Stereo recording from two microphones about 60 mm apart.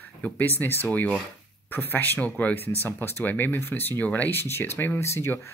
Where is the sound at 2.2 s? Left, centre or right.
Left.